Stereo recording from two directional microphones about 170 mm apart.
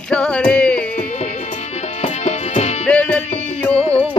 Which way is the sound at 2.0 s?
40° left (ahead or behind).